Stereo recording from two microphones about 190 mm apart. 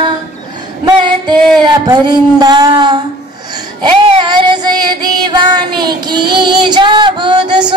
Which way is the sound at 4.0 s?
25° right (ahead or behind).